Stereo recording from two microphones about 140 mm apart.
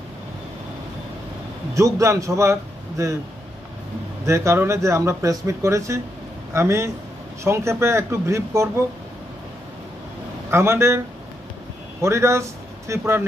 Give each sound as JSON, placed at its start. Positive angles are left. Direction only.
{"t": 1.8, "sound": "speech", "side_deg": -20}
{"t": 4.3, "sound": "speech", "side_deg": -20}
{"t": 10.5, "sound": "speech", "side_deg": -20}
{"t": 12.0, "sound": "speech", "side_deg": -20}